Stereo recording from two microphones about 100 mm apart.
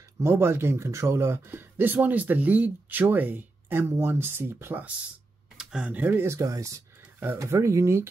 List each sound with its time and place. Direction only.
0.2 s speech: 25° right (ahead or behind)
5.6 s speech: 5° right (ahead or behind); by 8.1 s 30° right (ahead or behind)